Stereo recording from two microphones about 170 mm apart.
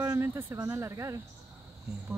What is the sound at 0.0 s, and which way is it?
Speech, 15° right (ahead or behind).